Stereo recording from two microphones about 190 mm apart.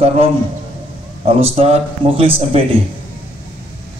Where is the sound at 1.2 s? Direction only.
30° right (ahead or behind).